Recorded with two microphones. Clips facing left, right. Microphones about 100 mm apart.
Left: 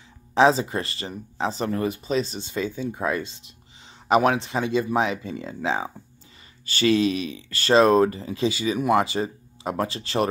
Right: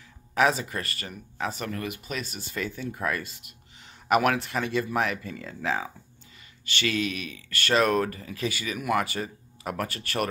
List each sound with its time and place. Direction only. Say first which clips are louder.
0.3 s speech: left 6 dB; 25° left (ahead or behind)